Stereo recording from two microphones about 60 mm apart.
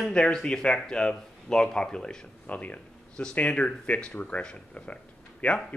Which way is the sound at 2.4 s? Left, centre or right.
Left.